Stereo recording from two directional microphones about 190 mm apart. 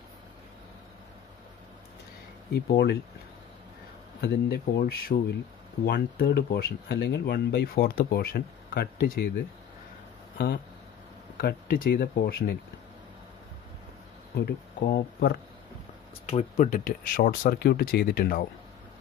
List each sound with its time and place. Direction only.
2.5 s speech: 60° left (ahead or behind)
4.7 s speech: 55° left (ahead or behind)
10.3 s speech: 60° left (ahead or behind)
14.3 s speech: 55° left (ahead or behind)
16.3 s speech: 35° left (ahead or behind); by 18.4 s 55° left (ahead or behind)